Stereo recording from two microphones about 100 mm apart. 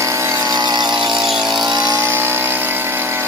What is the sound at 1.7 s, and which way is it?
Vehicle, 45° right (ahead or behind).